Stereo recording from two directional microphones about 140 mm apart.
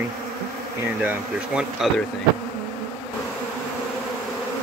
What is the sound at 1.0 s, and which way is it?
Speech, 5° right (ahead or behind).